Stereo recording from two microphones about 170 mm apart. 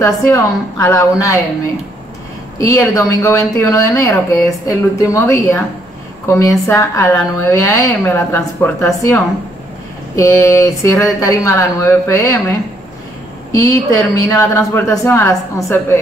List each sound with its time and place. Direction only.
0.0 s speech: 15° left (ahead or behind)
2.6 s speech: 15° left (ahead or behind)